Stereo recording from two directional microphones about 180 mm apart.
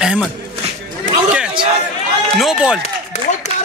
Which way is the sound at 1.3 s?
5° right (ahead or behind).